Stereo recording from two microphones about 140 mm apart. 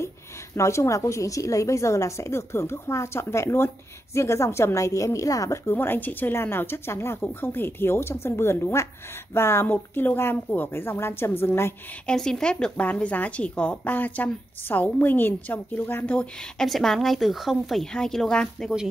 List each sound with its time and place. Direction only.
0.6 s a woman's voice: 20° left (ahead or behind)
12.1 s speech: 5° left (ahead or behind)